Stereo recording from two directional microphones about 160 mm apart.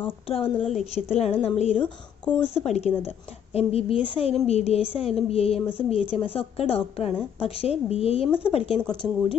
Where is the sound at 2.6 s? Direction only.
45° left (ahead or behind).